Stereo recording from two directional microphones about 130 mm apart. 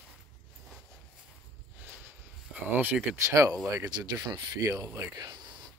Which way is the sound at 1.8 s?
10° right (ahead or behind).